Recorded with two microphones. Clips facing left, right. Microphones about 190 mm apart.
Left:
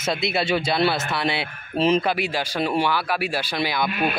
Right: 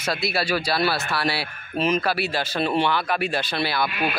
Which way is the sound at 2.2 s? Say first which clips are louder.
Even; 10° left (ahead or behind).